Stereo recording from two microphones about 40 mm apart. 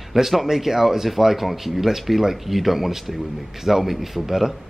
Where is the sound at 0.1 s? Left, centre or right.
Centre.